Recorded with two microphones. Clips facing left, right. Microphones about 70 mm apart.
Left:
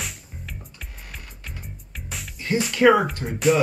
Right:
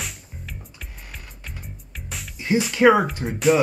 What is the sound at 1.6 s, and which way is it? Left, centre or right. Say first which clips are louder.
Music: even; centre.